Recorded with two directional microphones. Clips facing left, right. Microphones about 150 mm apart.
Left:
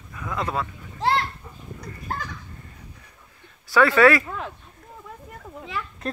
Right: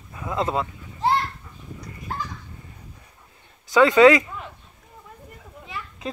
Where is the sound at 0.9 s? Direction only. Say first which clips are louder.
Right 1 dB; 85° left.